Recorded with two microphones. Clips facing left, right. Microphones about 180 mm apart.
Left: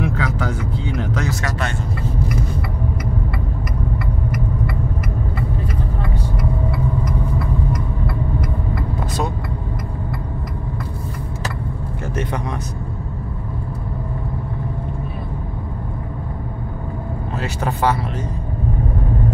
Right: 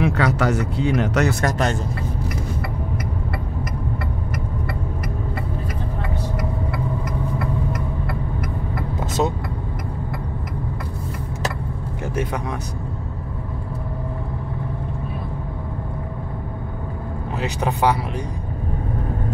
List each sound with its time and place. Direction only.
0.0 s a sound: 75° right (ahead or behind)
1.4 s speech: 40° right (ahead or behind)
17.4 s speech: 15° right (ahead or behind)